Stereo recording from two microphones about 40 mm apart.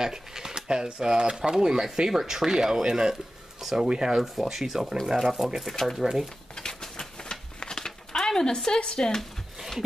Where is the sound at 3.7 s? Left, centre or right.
Centre.